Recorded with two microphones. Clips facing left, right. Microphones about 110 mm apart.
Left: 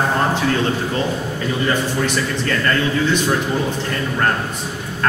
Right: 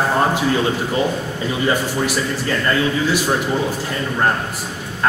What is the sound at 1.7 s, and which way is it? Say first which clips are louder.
A man's voice: right 1 dB; 10° right (ahead or behind).